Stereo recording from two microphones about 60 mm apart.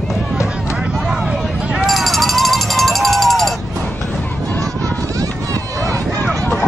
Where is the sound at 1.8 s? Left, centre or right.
Centre.